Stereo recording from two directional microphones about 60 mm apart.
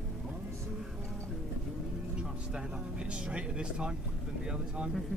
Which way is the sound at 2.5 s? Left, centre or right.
Centre.